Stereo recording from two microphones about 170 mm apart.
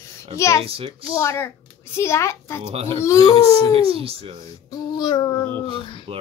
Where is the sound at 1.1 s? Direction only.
15° left (ahead or behind).